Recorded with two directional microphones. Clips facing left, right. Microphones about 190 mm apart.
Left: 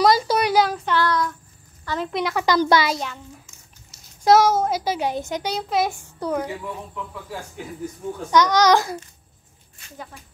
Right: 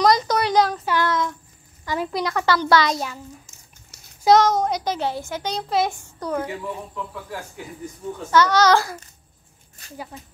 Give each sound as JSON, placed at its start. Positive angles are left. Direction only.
{"t": 0.0, "sound": "a sound", "side_deg": 5}
{"t": 0.9, "sound": "child singing", "side_deg": -20}
{"t": 1.9, "sound": "speech", "side_deg": -5}
{"t": 2.4, "sound": "a child's voice", "side_deg": 15}
{"t": 4.2, "sound": "a child's voice", "side_deg": 5}
{"t": 8.3, "sound": "a child's voice", "side_deg": 15}
{"t": 9.8, "sound": "a woman's voice", "side_deg": -40}